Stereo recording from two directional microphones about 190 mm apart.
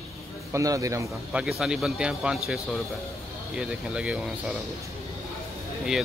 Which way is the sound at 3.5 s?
5° right (ahead or behind).